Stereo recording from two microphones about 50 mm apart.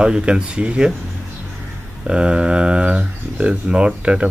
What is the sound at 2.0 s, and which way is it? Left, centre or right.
Speech, right.